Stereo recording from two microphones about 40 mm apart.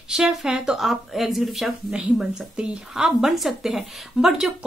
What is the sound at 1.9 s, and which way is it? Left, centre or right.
Speech, right.